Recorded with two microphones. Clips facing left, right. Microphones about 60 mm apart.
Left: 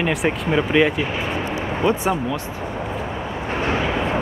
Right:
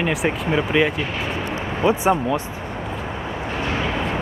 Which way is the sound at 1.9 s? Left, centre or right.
Centre.